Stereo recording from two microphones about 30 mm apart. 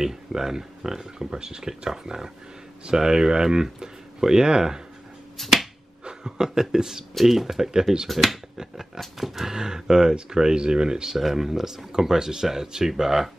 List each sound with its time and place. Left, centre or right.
0.0 s speech: centre
5.4 s finger snapping: centre
6.0 s speech: right
8.1 s speech: centre
8.5 s speech: centre
9.6 s speech: right
11.1 s speech: centre